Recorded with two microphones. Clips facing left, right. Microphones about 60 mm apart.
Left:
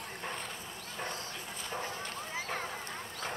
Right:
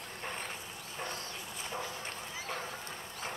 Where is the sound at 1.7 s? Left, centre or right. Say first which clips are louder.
Left 2 dB; left.